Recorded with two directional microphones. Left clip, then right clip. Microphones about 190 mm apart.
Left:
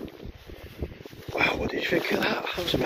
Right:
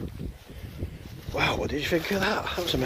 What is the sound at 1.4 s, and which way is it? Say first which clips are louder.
Dog: left 1 dB; 15° right (ahead or behind).